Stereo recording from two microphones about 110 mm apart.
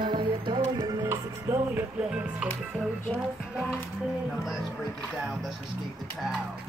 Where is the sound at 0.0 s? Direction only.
45° right (ahead or behind); by 1.6 s 25° right (ahead or behind).